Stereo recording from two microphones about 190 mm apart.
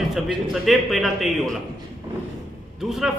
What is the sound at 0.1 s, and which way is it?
A man's voice, centre (ahead or behind).